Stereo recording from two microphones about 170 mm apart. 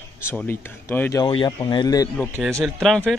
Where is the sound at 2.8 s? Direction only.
5° left (ahead or behind).